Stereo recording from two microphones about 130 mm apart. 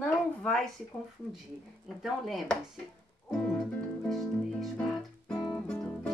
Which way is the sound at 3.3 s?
5° left (ahead or behind).